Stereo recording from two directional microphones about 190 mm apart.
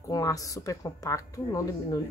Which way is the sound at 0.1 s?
20° left (ahead or behind).